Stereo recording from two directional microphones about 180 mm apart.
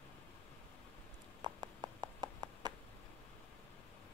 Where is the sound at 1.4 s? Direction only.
25° right (ahead or behind).